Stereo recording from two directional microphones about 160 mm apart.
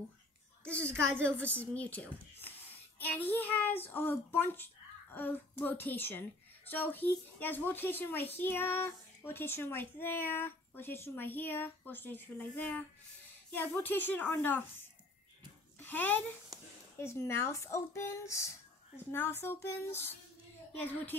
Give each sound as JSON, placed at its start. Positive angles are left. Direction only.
{"t": 0.7, "sound": "speech", "side_deg": 5}
{"t": 15.8, "sound": "speech", "side_deg": 10}